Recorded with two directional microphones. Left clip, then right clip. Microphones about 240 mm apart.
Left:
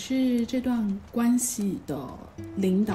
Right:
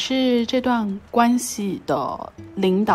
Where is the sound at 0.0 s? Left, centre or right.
Right.